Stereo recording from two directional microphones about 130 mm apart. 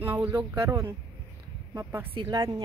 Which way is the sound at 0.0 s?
15° right (ahead or behind).